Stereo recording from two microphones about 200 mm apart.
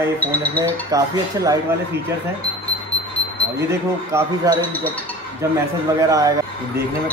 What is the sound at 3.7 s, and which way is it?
Speech, 15° right (ahead or behind).